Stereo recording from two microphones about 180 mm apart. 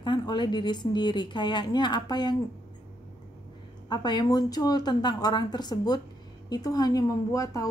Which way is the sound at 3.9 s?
25° left (ahead or behind).